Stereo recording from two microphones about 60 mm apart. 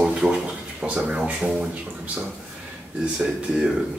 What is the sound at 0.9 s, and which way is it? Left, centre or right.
Speech, right.